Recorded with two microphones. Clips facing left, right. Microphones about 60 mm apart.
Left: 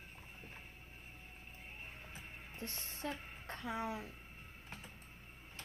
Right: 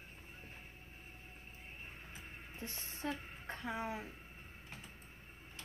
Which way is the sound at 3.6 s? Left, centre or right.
Right.